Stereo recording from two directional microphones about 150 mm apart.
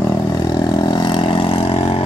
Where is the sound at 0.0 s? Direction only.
25° left (ahead or behind).